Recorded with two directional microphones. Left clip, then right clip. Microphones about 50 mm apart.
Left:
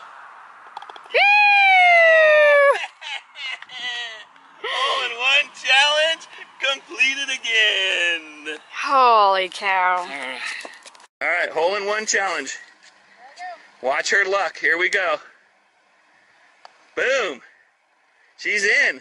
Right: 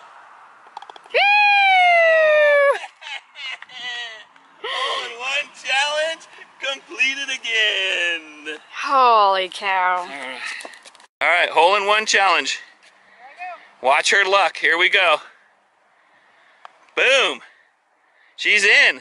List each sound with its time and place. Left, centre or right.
0.7 s a sound: centre
5.0 s a sound: centre
11.2 s speech: right
11.6 s speech: centre
13.7 s speech: centre
16.9 s speech: centre